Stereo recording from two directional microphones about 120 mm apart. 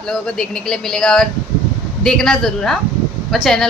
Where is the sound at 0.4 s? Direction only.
5° left (ahead or behind).